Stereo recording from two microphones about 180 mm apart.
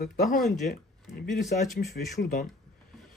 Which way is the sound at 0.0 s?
55° left (ahead or behind).